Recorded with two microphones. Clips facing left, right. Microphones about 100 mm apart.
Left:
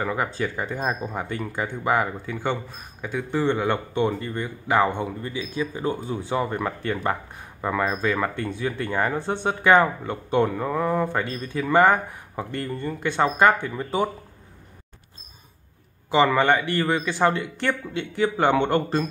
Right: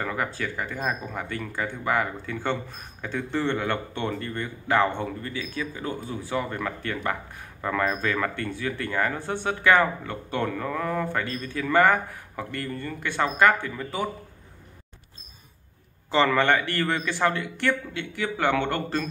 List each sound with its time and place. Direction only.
0.0 s speech: 20° left (ahead or behind)
16.1 s speech: 15° left (ahead or behind)